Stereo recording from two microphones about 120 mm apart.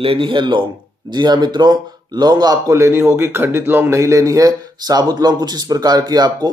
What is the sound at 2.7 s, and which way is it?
A man's voice, 20° right (ahead or behind).